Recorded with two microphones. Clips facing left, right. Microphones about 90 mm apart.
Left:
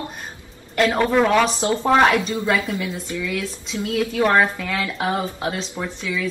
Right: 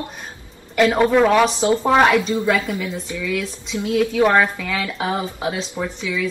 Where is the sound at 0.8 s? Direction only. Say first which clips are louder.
Right 3 dB; 20° right (ahead or behind).